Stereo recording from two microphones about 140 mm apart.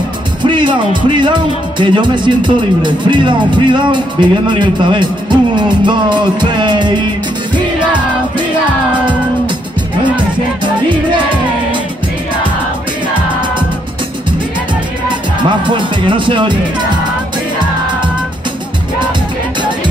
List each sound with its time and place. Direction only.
0.4 s music: 35° right (ahead or behind)
15.6 s music: 35° right (ahead or behind)